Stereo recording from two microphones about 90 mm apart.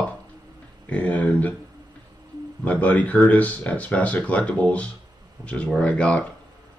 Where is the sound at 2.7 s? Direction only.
15° left (ahead or behind).